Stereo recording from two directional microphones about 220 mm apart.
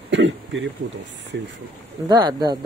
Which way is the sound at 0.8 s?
55° right (ahead or behind).